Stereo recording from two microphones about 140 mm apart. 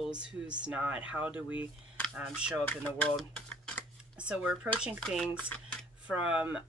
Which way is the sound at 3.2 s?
10° left (ahead or behind).